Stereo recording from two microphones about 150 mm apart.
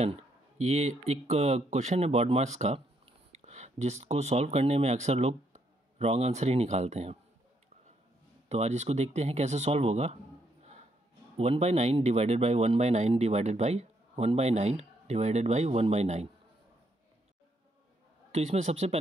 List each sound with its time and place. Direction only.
0.6 s speech: 45° right (ahead or behind)
8.5 s speech: 45° right (ahead or behind)
11.3 s speech: 45° right (ahead or behind)
18.3 s speech: 50° right (ahead or behind)